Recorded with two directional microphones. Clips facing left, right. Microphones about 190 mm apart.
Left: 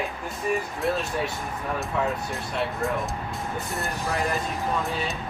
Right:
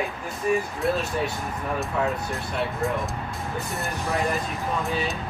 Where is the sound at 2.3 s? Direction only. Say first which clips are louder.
Right 1 dB; centre (ahead or behind).